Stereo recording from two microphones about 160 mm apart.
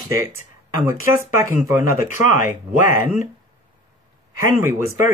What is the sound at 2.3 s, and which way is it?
Speech, 60° left (ahead or behind).